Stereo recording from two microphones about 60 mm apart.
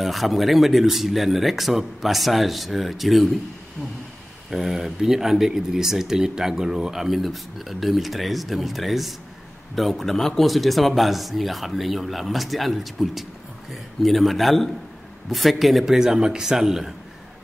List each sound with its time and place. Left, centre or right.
0.0 s speech: centre
4.5 s speech: centre